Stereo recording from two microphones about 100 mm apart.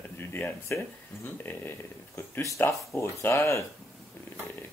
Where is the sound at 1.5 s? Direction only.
20° left (ahead or behind).